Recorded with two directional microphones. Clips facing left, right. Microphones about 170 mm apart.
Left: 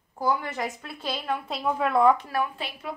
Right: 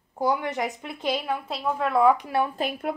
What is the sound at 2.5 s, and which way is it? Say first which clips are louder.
Speech: right 8 dB; 45° right (ahead or behind).